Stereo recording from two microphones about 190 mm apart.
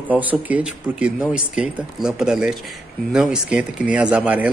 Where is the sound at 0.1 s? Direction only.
10° right (ahead or behind).